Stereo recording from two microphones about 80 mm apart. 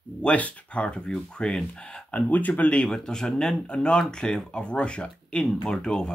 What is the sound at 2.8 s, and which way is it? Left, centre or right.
Speech, centre.